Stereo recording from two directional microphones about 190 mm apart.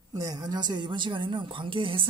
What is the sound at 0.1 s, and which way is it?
A woman's voice, 20° right (ahead or behind).